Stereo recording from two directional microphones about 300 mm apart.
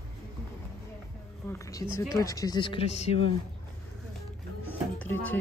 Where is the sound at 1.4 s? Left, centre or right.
Centre.